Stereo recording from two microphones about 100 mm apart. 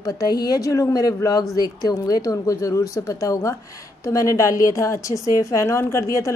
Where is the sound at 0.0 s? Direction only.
40° left (ahead or behind).